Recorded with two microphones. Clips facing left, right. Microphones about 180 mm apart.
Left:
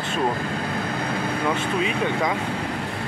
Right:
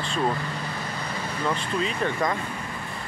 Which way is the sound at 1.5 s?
75° left (ahead or behind).